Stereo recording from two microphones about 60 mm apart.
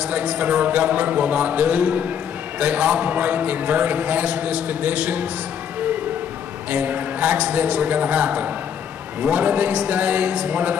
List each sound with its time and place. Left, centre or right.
0.0 s a man's voice: centre
6.7 s a man's voice: right